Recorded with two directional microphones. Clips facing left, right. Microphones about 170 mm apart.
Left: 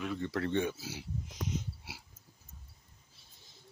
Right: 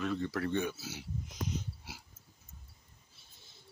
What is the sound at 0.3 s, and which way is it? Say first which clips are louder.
Speech: left 1 dB; 25° left (ahead or behind).